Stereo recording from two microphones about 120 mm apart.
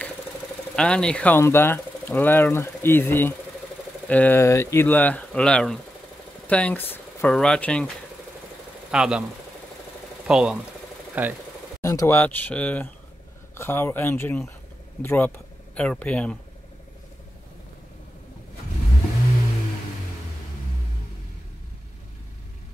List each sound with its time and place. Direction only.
0.7 s speech: 5° left (ahead or behind)
1.4 s speech: 20° left (ahead or behind)
7.2 s speech: 5° left (ahead or behind)
8.9 s speech: 5° right (ahead or behind)
10.2 s speech: 5° right (ahead or behind)
11.8 s speech: 25° left (ahead or behind)
12.2 s speech: 15° left (ahead or behind)